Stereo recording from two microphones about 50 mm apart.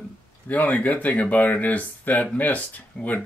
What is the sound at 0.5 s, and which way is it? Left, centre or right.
Speech, left.